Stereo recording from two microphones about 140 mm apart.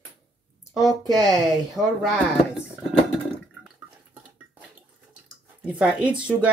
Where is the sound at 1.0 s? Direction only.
25° right (ahead or behind).